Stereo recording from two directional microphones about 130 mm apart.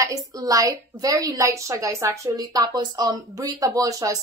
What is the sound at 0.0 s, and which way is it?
A woman's voice, 25° right (ahead or behind).